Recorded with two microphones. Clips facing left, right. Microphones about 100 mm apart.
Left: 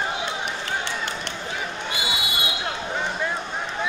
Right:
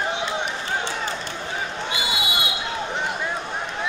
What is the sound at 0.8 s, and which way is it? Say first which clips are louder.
Run: right 2 dB; 65° left (ahead or behind).